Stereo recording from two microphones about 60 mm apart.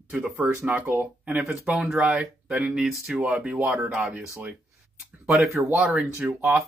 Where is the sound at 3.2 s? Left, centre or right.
Right.